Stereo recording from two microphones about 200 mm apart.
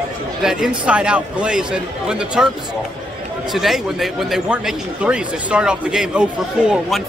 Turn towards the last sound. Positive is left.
turn(degrees=0)  # may be behind; listen again after turning